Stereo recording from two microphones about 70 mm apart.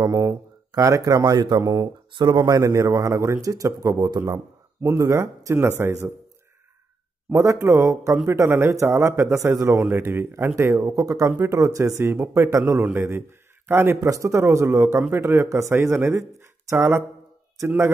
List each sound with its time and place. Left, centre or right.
0.0 s a man's voice: right
1.6 s a man's voice: right
2.1 s a man's voice: right
4.8 s speech: right
7.6 s speech: right
8.3 s speech: right
9.8 s speech: right
10.5 s a man's voice: right
12.0 s speech: right
12.9 s speech: right
14.0 s speech: right